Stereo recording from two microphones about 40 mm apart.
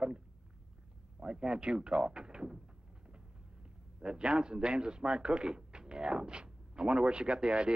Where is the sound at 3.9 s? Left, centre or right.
Right.